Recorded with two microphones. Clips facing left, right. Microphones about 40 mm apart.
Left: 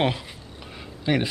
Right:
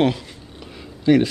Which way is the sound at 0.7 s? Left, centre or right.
Centre.